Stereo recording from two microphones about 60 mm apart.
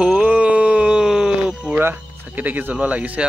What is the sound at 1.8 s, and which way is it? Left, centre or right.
A man's voice, right.